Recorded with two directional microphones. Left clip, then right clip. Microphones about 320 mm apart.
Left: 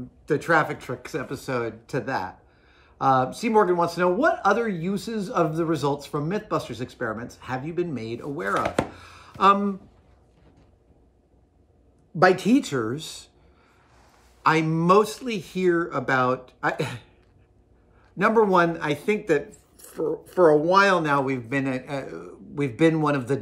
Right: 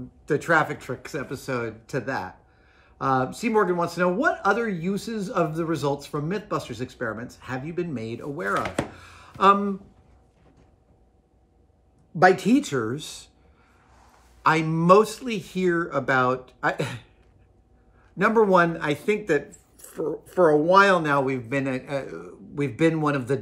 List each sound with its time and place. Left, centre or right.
0.3 s speech: centre
8.9 s a sound: centre
12.2 s speech: centre
14.4 s speech: centre
18.1 s speech: centre